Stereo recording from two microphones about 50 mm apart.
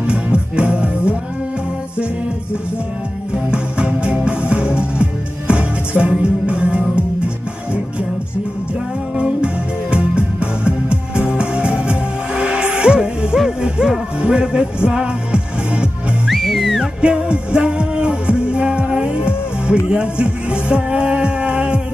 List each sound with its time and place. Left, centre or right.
0.0 s music: right
3.5 s music: right
9.1 s music: centre
16.3 s music: centre
16.8 s music: centre